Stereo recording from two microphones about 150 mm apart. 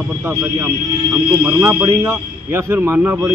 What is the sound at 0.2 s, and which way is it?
A man's voice, 20° right (ahead or behind).